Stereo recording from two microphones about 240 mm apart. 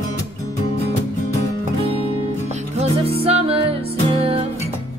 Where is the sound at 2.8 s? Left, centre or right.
Right.